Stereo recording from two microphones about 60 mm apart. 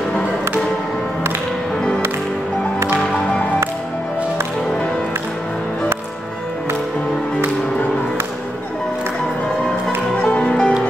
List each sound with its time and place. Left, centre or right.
10.2 s music: centre